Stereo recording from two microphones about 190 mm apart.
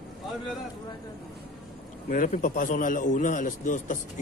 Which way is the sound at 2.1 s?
45° left (ahead or behind).